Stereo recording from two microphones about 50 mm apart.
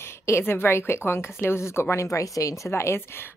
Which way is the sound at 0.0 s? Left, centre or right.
Left.